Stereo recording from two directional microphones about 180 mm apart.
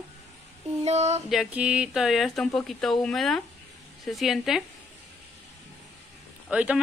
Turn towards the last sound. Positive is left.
turn(degrees=-5)  # may be behind; listen again after turning